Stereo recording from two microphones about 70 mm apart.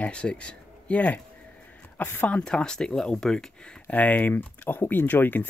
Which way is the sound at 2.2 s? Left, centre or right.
Centre.